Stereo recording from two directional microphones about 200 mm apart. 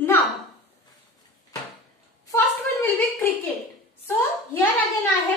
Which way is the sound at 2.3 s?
10° left (ahead or behind).